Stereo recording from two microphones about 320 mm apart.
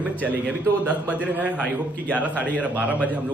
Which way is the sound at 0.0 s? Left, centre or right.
Centre.